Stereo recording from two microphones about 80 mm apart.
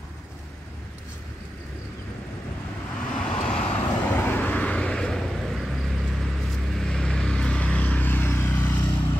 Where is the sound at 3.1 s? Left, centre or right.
Centre.